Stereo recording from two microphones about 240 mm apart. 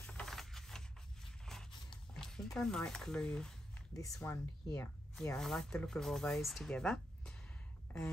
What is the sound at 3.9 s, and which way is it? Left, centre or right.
Speech, centre.